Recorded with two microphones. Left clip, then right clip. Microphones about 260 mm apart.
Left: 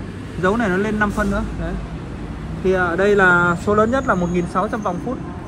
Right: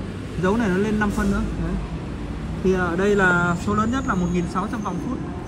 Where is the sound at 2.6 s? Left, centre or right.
Centre.